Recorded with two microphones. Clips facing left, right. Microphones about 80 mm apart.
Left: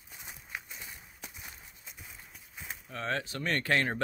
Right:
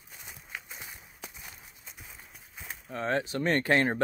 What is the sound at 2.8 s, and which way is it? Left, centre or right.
Speech, right.